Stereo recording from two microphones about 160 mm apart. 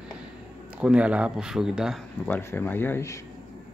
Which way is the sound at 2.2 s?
10° left (ahead or behind).